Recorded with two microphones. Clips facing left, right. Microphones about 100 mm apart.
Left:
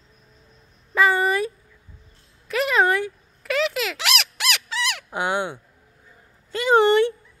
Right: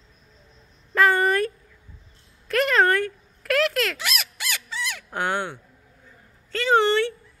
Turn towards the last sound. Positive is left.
turn(degrees=15)  # may be behind; listen again after turning